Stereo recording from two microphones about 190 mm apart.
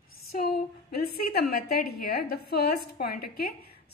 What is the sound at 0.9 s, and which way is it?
A woman's voice, 55° left (ahead or behind).